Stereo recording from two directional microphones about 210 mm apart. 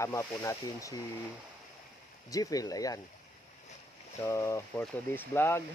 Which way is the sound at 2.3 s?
15° left (ahead or behind).